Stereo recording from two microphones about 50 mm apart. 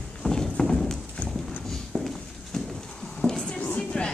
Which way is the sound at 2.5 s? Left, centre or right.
Centre.